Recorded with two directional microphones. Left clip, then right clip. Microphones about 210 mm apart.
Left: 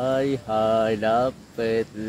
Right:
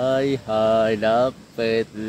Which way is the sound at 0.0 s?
20° right (ahead or behind).